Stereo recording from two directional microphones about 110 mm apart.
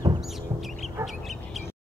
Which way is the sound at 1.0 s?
Centre (ahead or behind).